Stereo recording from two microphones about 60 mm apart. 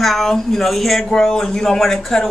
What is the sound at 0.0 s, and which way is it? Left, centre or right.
Speech, centre.